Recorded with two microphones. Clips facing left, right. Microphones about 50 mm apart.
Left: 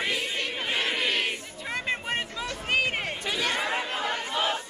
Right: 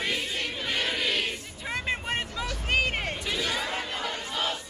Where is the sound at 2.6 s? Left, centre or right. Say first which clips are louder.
Even; centre.